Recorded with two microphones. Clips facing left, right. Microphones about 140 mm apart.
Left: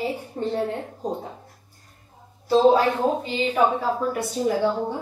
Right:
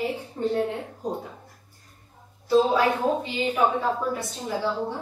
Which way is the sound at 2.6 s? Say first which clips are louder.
Left 5 dB; 35° left (ahead or behind).